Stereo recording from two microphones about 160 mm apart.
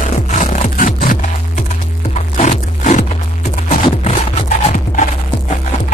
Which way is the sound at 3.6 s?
45° left (ahead or behind).